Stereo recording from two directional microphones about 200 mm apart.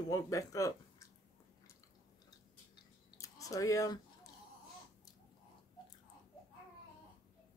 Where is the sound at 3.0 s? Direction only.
15° left (ahead or behind).